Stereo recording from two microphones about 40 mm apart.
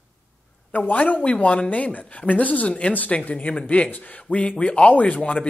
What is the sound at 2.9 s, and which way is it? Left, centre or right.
Speech, left.